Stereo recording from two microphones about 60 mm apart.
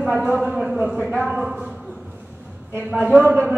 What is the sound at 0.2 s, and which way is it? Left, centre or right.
Speech, centre.